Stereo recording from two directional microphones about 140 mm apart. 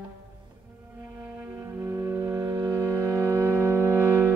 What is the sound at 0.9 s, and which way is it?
Music, 20° right (ahead or behind).